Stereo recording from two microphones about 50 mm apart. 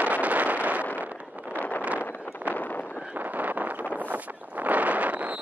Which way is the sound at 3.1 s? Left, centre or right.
Right.